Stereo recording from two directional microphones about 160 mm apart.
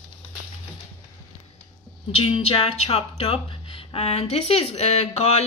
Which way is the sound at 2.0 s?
40° left (ahead or behind).